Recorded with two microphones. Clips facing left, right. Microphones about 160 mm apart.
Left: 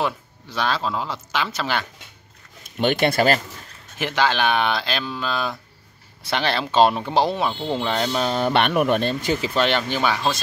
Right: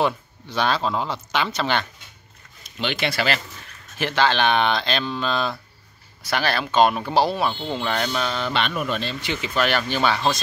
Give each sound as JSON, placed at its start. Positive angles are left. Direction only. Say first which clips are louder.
{"t": 0.0, "sound": "speech", "louder": "right 3 dB", "side_deg": 0}
{"t": 2.8, "sound": "speech", "louder": "left 6 dB", "side_deg": 50}
{"t": 4.0, "sound": "speech", "louder": "right 1 dB", "side_deg": 10}
{"t": 6.2, "sound": "speech", "louder": "left 1 dB", "side_deg": 25}
{"t": 8.2, "sound": "speech", "louder": "left 4 dB", "side_deg": 40}